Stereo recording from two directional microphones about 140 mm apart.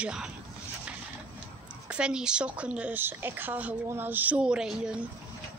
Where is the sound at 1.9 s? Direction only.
5° right (ahead or behind).